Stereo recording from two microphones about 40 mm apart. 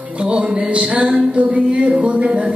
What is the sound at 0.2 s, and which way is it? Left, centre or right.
Music, right.